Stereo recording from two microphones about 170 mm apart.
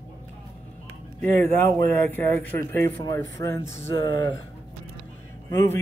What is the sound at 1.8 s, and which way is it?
Speech, 10° left (ahead or behind).